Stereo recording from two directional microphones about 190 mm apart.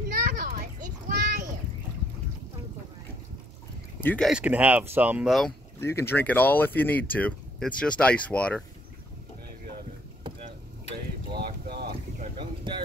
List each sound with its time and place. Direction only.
0.1 s children playing: 45° right (ahead or behind)
4.0 s speech: 10° left (ahead or behind)
4.3 s speech: 5° right (ahead or behind)
5.8 s speech: 15° left (ahead or behind)
10.3 s chop: 25° right (ahead or behind)
11.3 s boat: 55° right (ahead or behind)
12.2 s boat: 30° right (ahead or behind)